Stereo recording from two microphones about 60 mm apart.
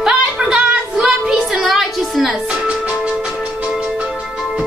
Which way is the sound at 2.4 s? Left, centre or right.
Right.